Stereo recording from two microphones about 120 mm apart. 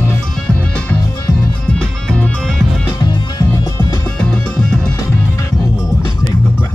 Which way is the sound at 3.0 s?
35° left (ahead or behind).